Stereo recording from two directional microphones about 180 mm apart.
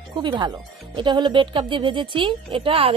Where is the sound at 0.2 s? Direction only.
25° right (ahead or behind).